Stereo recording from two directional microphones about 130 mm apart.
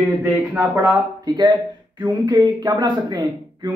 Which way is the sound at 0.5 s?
20° right (ahead or behind).